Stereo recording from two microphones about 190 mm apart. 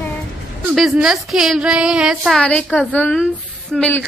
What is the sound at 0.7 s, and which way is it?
A woman's voice, centre (ahead or behind).